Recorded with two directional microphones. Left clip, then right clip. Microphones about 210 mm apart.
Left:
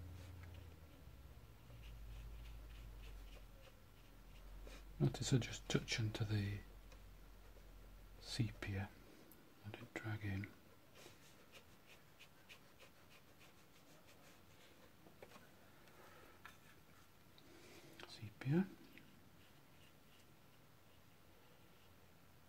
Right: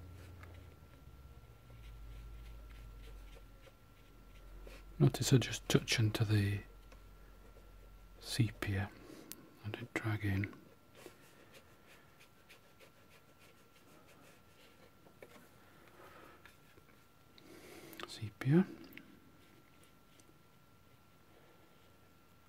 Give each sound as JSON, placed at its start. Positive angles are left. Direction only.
{"t": 4.9, "sound": "speech", "side_deg": -35}
{"t": 8.2, "sound": "speech", "side_deg": -35}
{"t": 17.9, "sound": "whispering", "side_deg": -35}